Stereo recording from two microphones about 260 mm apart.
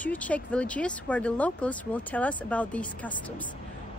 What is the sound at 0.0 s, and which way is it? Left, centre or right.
Speech, centre.